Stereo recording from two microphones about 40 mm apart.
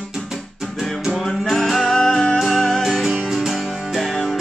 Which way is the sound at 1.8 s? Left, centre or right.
Centre.